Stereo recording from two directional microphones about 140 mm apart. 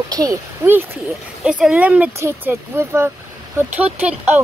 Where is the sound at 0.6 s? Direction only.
15° right (ahead or behind).